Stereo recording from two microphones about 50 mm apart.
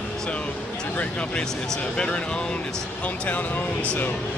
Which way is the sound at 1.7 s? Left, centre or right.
Centre.